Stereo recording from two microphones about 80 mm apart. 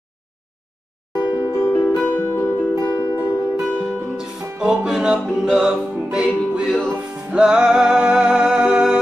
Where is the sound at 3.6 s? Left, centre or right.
Centre.